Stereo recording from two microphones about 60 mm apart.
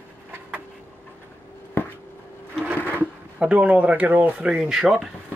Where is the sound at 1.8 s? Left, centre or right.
Left.